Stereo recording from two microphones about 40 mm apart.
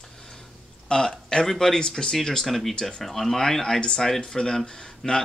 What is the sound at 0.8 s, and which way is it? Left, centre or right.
Speech, centre.